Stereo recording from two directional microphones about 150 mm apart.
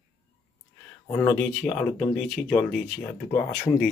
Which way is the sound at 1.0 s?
15° left (ahead or behind).